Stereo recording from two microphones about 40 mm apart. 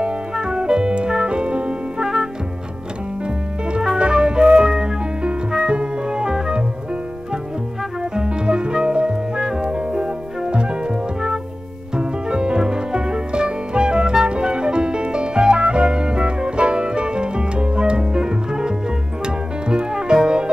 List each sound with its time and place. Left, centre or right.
0.0 s music: right
4.0 s flute: right
8.1 s music: right